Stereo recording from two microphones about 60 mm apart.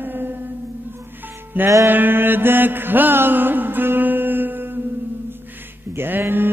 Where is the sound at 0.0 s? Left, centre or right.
Right.